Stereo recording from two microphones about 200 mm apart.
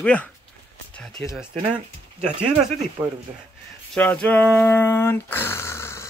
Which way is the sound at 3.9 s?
5° left (ahead or behind).